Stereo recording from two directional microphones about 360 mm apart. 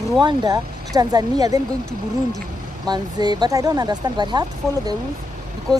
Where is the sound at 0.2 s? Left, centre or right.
Centre.